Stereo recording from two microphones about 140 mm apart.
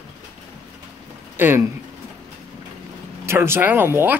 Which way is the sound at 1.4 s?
15° right (ahead or behind).